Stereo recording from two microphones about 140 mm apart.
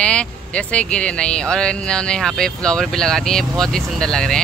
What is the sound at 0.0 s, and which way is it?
Speech, 10° left (ahead or behind).